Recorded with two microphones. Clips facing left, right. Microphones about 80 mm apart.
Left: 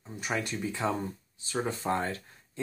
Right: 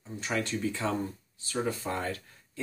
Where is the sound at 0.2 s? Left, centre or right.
Centre.